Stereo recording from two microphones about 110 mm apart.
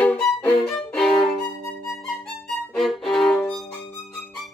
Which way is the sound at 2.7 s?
Centre (ahead or behind).